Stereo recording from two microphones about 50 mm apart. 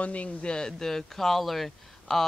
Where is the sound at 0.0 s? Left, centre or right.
Left.